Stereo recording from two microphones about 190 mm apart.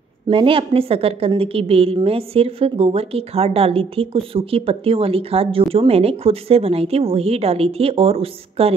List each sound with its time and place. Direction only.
0.3 s a woman's voice: 30° right (ahead or behind)